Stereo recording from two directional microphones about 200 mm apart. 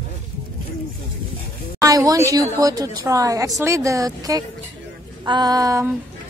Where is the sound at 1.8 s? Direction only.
15° right (ahead or behind).